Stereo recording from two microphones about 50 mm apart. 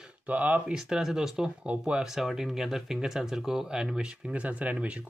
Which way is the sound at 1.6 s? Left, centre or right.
Right.